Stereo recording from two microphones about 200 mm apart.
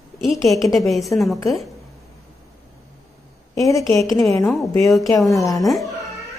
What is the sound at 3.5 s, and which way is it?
A woman's voice, 15° left (ahead or behind).